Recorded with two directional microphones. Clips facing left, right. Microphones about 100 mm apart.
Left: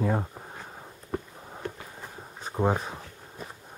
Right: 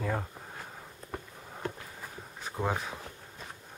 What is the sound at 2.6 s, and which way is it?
Speech, 20° left (ahead or behind).